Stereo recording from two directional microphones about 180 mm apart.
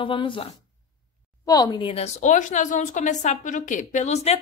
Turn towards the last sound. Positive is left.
turn(degrees=35)  # may be behind; listen again after turning